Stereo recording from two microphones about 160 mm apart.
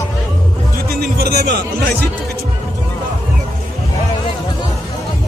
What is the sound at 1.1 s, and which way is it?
Speech, 85° right.